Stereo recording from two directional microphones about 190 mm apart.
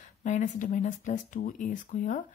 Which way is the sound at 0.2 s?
40° left (ahead or behind).